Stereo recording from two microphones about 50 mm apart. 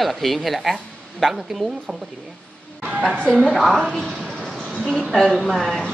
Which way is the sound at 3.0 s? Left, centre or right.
Centre.